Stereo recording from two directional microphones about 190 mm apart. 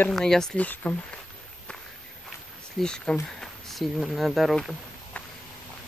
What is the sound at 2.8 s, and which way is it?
Speech, 5° left (ahead or behind).